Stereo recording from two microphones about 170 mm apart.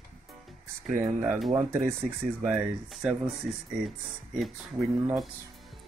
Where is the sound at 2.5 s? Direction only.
5° right (ahead or behind).